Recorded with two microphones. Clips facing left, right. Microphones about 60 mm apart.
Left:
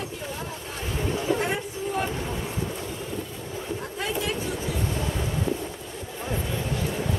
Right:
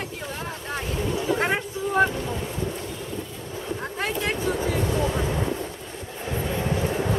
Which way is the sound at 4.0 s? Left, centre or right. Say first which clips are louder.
Right 3 dB; right.